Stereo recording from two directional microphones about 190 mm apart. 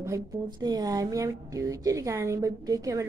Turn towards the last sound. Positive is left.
turn(degrees=-20)  # may be behind; listen again after turning